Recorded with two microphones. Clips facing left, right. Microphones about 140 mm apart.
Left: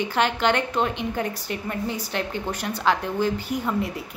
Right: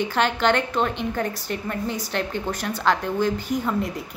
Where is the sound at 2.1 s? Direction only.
10° left (ahead or behind).